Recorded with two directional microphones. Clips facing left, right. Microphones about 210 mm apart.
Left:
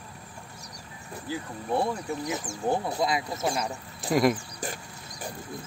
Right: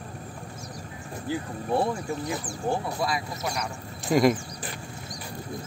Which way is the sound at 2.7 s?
20° left (ahead or behind).